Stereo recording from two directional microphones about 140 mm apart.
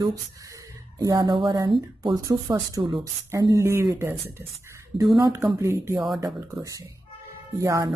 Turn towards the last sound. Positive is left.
turn(degrees=-25)  # may be behind; listen again after turning